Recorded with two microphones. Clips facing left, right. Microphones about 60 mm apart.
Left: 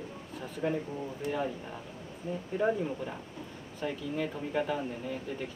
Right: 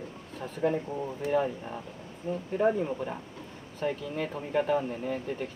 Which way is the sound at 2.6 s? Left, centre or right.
Right.